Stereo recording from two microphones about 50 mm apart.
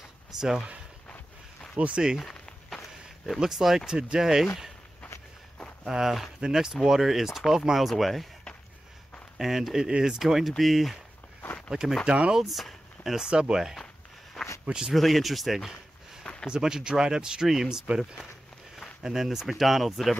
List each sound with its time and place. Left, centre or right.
0.3 s speech: centre
1.8 s speech: right
3.3 s speech: centre
5.9 s speech: centre
9.4 s speech: centre
12.1 s speech: right
12.4 s speech: centre
13.3 s speech: centre
14.4 s a sound: centre
14.7 s speech: centre
15.0 s speech: centre
16.5 s speech: centre